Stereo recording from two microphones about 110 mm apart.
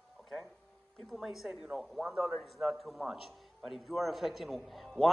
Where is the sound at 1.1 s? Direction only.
5° right (ahead or behind).